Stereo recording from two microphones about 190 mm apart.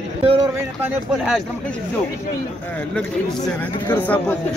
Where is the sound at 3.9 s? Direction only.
10° left (ahead or behind).